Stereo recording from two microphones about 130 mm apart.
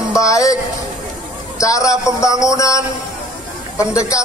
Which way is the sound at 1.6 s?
25° left (ahead or behind).